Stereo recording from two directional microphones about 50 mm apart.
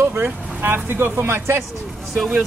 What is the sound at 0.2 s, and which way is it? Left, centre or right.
Speech, right.